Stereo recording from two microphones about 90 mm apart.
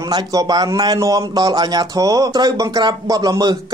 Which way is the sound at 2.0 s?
40° right (ahead or behind).